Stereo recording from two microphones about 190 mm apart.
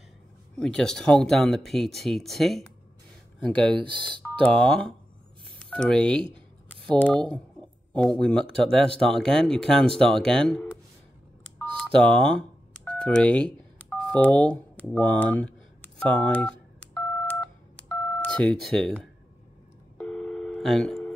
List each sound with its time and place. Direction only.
0.6 s speech: 5° left (ahead or behind)
3.7 s speech: 25° right (ahead or behind)
4.2 s speech: 5° left (ahead or behind)
11.5 s telephone dialing: 5° left (ahead or behind)
18.2 s speech: 5° left (ahead or behind)
20.0 s busy signal: 5° left (ahead or behind)